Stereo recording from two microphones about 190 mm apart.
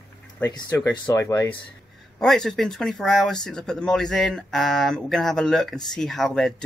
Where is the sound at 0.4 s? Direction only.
20° left (ahead or behind).